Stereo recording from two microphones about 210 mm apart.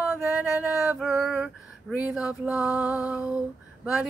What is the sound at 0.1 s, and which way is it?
Male singing, 5° right (ahead or behind).